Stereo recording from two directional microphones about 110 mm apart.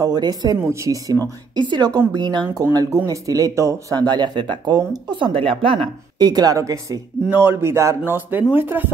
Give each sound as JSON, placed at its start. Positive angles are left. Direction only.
{"t": 0.0, "sound": "speech", "side_deg": -40}
{"t": 0.7, "sound": "speech", "side_deg": -30}
{"t": 1.6, "sound": "a woman's voice", "side_deg": -45}
{"t": 2.4, "sound": "speech", "side_deg": -30}
{"t": 7.2, "sound": "speech", "side_deg": -20}